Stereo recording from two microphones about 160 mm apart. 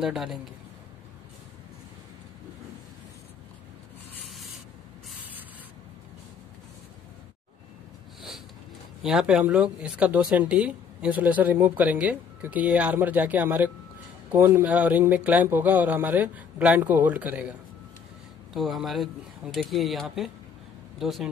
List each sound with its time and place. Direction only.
0.0 s speech: centre (ahead or behind)
9.0 s speech: 5° right (ahead or behind)
14.3 s speech: 20° right (ahead or behind)
14.6 s speech: 10° right (ahead or behind)